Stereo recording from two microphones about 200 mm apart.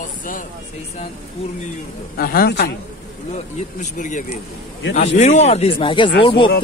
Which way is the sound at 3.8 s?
40° left (ahead or behind).